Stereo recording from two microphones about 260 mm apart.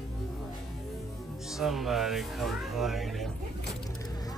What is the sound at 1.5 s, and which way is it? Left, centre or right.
Speech, centre.